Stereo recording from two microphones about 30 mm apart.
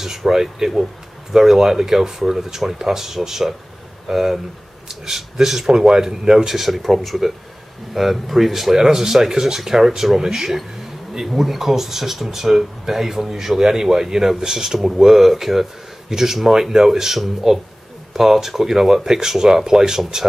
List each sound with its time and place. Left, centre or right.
0.2 s speech: centre
6.5 s speech: centre
11.2 s speech: centre